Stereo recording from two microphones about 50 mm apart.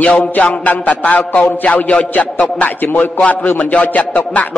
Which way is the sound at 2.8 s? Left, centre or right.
Left.